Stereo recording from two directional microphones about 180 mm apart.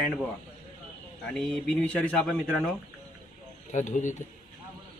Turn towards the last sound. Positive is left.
turn(degrees=45)  # may be behind; listen again after turning